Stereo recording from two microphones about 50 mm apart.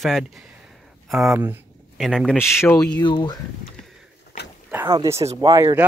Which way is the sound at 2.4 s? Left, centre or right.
Left.